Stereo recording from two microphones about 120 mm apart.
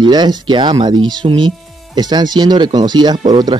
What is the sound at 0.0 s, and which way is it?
Speech, 35° right (ahead or behind).